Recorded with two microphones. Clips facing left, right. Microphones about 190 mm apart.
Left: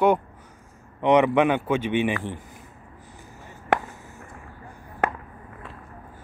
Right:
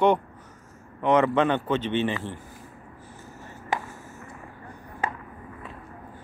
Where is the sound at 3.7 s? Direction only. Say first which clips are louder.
Left 6 dB; 60° left (ahead or behind).